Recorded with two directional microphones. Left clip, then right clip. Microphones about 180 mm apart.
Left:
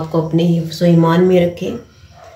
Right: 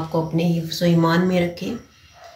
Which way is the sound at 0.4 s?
50° left (ahead or behind).